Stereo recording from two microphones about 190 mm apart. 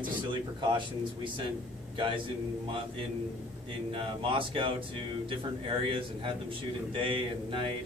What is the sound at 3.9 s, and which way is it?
A man's voice, 30° right (ahead or behind).